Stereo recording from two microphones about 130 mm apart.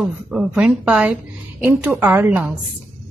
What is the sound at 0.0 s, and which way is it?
A woman's voice, 5° right (ahead or behind).